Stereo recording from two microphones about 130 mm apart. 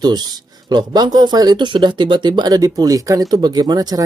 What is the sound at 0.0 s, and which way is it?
Speech, 35° right (ahead or behind).